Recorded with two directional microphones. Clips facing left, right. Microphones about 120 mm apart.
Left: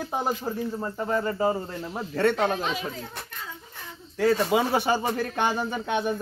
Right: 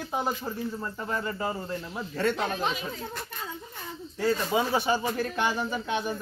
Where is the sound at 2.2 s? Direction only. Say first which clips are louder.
Left 4 dB; 60° left (ahead or behind).